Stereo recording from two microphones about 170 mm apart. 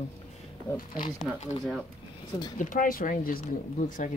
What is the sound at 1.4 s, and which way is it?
Speech, 40° left (ahead or behind).